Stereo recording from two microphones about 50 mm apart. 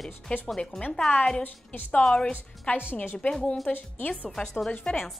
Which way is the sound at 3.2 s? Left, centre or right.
Left.